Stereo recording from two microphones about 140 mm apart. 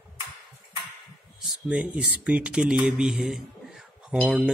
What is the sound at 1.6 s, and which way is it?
Speech, 10° right (ahead or behind).